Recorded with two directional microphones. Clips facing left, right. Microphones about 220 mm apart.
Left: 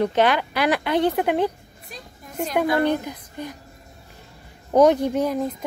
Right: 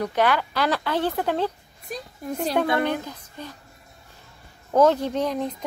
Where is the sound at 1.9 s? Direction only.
45° right (ahead or behind).